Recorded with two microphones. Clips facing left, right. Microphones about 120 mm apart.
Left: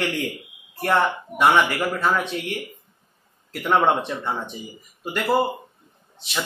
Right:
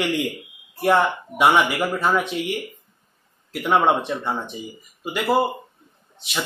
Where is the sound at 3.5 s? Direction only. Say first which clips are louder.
Right 1 dB; 5° right (ahead or behind).